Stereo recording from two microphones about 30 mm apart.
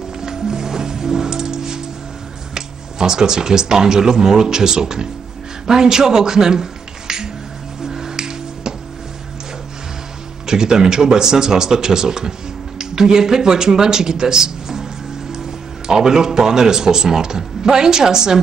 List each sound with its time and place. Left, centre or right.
0.2 s music: centre
2.5 s speech: right
7.8 s finger snapping: centre
10.4 s speech: right
15.9 s a man's voice: centre